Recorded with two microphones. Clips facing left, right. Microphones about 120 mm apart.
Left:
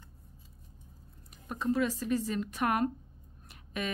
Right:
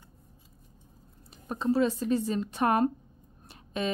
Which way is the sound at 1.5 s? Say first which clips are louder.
Right 4 dB; 30° right (ahead or behind).